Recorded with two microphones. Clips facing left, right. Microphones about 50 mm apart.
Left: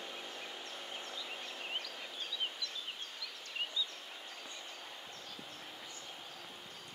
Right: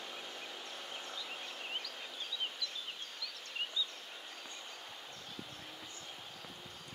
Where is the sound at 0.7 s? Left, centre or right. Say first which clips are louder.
Even; centre.